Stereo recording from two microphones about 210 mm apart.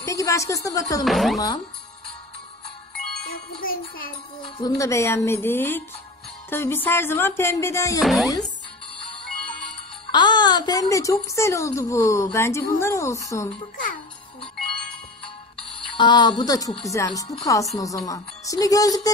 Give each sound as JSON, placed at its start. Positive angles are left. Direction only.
{"t": 0.0, "sound": "a woman's voice", "side_deg": 15}
{"t": 1.0, "sound": "speech", "side_deg": 0}
{"t": 3.3, "sound": "music", "side_deg": 45}
{"t": 4.4, "sound": "a woman's voice", "side_deg": 20}
{"t": 8.0, "sound": "speech", "side_deg": 0}
{"t": 10.1, "sound": "a woman's voice", "side_deg": 20}
{"t": 16.0, "sound": "a woman's voice", "side_deg": 20}